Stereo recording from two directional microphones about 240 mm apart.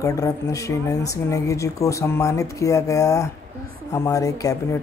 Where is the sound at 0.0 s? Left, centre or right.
Centre.